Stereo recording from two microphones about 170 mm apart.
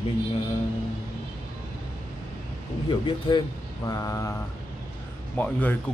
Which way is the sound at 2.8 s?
30° left (ahead or behind).